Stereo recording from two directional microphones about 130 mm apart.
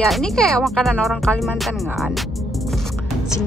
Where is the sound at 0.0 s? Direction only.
5° left (ahead or behind).